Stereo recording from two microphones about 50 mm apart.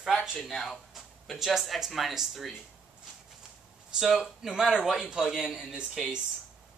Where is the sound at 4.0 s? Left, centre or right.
Centre.